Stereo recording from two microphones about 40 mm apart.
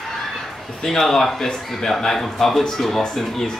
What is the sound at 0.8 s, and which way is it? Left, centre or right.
A woman's voice, centre.